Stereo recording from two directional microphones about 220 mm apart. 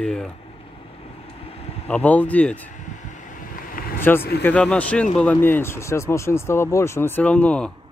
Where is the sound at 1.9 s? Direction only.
5° left (ahead or behind).